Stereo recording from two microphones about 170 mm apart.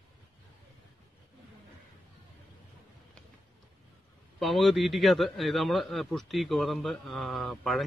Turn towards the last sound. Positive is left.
turn(degrees=0)  # may be behind; listen again after turning